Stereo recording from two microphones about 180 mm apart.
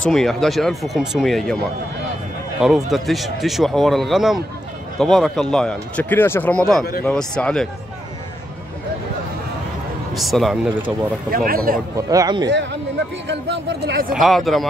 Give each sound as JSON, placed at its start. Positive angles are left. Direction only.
{"t": 0.1, "sound": "speech", "side_deg": 0}
{"t": 2.6, "sound": "speech", "side_deg": 0}
{"t": 10.1, "sound": "speech", "side_deg": 0}
{"t": 11.2, "sound": "speech", "side_deg": -55}
{"t": 12.1, "sound": "speech", "side_deg": -20}
{"t": 13.3, "sound": "speech", "side_deg": -70}
{"t": 14.1, "sound": "speech", "side_deg": 0}